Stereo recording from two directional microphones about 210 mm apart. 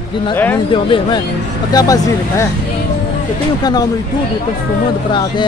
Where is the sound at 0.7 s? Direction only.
20° left (ahead or behind).